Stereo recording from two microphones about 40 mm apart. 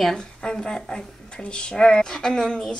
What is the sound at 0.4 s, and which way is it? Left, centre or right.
A woman's voice, centre.